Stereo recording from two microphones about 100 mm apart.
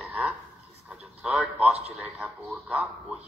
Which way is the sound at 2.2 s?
15° right (ahead or behind).